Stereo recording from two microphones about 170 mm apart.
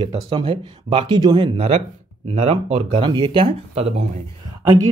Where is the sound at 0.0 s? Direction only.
25° right (ahead or behind).